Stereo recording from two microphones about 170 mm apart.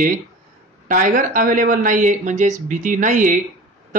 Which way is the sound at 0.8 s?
50° right (ahead or behind).